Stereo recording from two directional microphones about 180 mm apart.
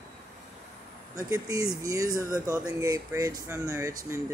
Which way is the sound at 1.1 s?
20° right (ahead or behind).